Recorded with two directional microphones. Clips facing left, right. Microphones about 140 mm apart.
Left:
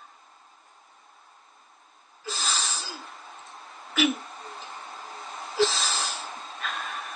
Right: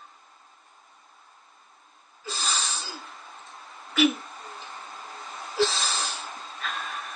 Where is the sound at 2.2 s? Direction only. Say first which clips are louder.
Even; centre (ahead or behind).